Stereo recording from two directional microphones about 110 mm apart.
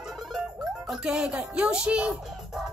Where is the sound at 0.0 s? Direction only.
Centre (ahead or behind).